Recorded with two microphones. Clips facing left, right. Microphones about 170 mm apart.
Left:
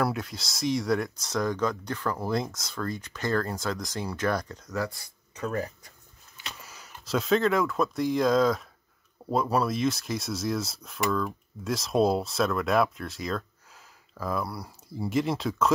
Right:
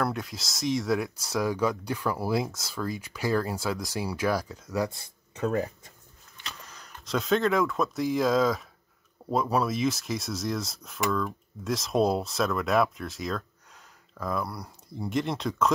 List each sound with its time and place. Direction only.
0.0 s speech: centre (ahead or behind)
4.7 s speech: 20° right (ahead or behind)
6.3 s speech: 5° left (ahead or behind)